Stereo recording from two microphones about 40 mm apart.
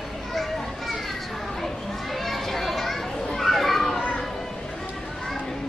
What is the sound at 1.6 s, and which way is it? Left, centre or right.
Children playing, centre.